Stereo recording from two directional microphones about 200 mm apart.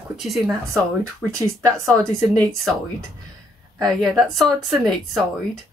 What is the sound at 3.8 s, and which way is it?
Speech, centre (ahead or behind).